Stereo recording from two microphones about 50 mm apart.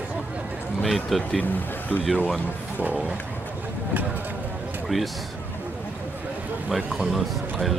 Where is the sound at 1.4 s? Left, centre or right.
Left.